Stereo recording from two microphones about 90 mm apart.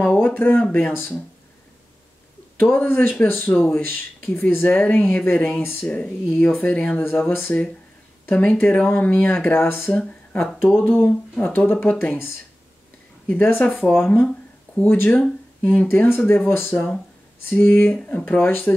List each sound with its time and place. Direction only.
0.0 s speech: 15° left (ahead or behind)
2.6 s speech: 20° left (ahead or behind)
13.3 s speech: 20° left (ahead or behind)